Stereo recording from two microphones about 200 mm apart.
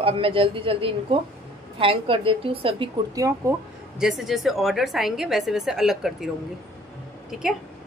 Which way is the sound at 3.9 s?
Centre (ahead or behind).